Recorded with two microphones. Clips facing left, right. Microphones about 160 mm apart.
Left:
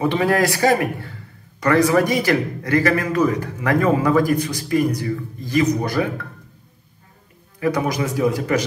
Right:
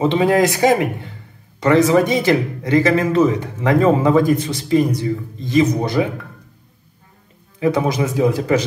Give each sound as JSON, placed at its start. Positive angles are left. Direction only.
{"t": 0.0, "sound": "speech", "side_deg": -20}
{"t": 7.6, "sound": "speech", "side_deg": -25}